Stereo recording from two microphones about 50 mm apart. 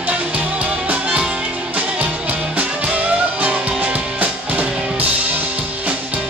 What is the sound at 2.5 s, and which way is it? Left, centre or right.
Music, right.